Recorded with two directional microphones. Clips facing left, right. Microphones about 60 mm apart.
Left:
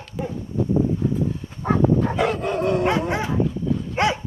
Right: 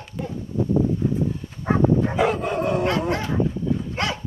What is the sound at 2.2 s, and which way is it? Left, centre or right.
Dog, centre.